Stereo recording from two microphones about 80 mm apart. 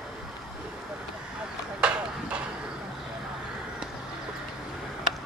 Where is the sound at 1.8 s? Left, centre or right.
Centre.